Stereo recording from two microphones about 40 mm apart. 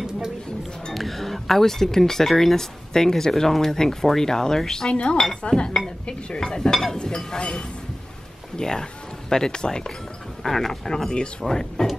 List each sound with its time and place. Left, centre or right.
0.9 s speech: centre
10.4 s speech: centre